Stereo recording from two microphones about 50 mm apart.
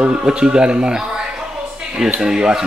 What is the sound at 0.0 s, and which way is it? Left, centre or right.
Speech, right.